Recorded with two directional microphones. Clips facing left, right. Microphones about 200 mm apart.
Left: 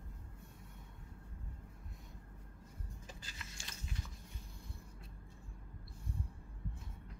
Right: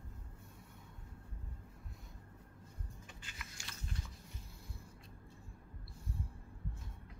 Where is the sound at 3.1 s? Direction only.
35° left (ahead or behind).